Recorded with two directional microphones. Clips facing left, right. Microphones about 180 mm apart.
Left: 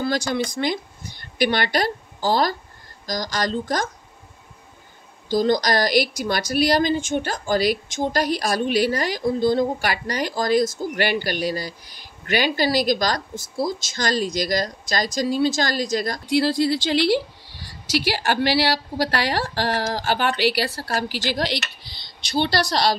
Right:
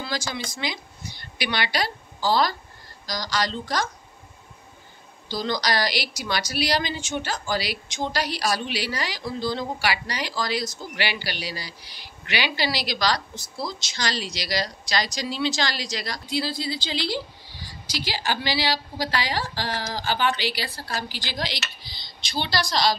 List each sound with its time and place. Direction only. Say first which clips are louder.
0.3 s a woman's voice: left 8 dB; 55° left (ahead or behind)
5.3 s a woman's voice: left 7 dB; 45° left (ahead or behind)
16.3 s speech: left 9 dB; 70° left (ahead or behind)